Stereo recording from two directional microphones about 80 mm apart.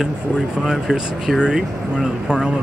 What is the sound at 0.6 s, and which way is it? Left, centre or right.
Speech, centre.